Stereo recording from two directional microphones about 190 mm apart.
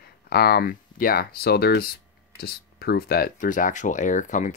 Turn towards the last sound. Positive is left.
turn(degrees=40)  # may be behind; listen again after turning